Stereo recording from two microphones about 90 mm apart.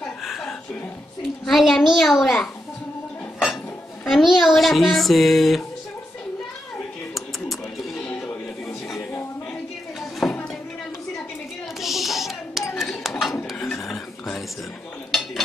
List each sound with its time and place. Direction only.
0.0 s chuckle: 5° left (ahead or behind)
1.4 s speech: centre (ahead or behind)
4.0 s speech: centre (ahead or behind)
10.2 s a sound: centre (ahead or behind)
11.8 s a sound: centre (ahead or behind)
15.0 s dishes: centre (ahead or behind)